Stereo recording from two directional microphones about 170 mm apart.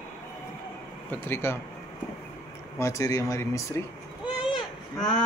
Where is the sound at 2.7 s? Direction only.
20° left (ahead or behind).